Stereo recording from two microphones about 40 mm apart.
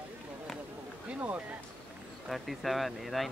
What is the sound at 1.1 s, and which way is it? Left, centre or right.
Speech, right.